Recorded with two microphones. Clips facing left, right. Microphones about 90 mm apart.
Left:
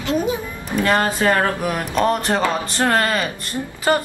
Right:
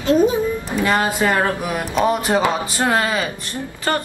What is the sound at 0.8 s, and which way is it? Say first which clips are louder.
Speech: left 1 dB; 5° right (ahead or behind).